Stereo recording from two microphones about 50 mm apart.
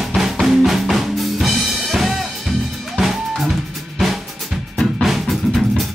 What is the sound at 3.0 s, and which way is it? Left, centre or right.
Drum kit, centre.